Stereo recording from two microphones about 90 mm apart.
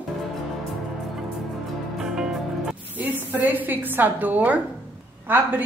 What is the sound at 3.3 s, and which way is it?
A woman's voice, 20° right (ahead or behind).